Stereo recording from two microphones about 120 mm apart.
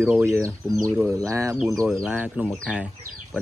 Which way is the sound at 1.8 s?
5° right (ahead or behind).